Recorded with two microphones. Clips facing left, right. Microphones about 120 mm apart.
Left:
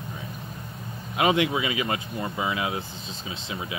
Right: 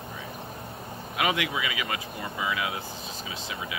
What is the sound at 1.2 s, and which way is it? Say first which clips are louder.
Speech: left 5 dB; 25° left (ahead or behind).